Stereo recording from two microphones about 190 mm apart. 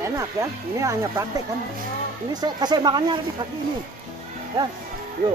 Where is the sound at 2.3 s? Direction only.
20° right (ahead or behind).